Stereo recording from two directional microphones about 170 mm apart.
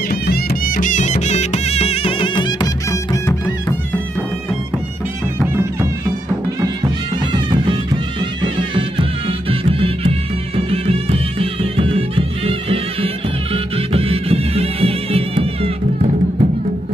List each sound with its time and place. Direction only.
0.1 s music: 65° left (ahead or behind); by 3.7 s 15° left (ahead or behind)
7.3 s music: 25° right (ahead or behind); by 16.4 s 45° right (ahead or behind)